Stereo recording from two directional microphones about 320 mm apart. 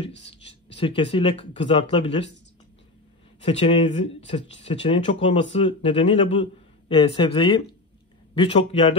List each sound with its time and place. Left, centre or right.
0.0 s speech: centre
3.4 s speech: centre